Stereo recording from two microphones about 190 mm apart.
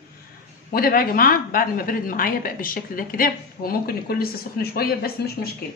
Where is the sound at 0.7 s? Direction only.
50° left (ahead or behind).